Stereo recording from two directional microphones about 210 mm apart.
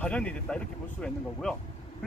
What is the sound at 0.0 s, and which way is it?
Speech, 5° left (ahead or behind).